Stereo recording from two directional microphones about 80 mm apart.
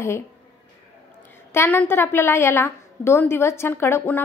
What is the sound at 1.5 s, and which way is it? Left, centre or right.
A woman's voice, left.